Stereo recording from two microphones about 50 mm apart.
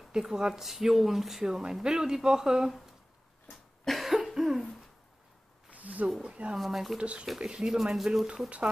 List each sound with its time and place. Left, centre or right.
0.1 s speech: centre
3.8 s cough: centre
5.7 s a sound: right
6.2 s speech: right
6.5 s speech: centre
7.0 s speech: right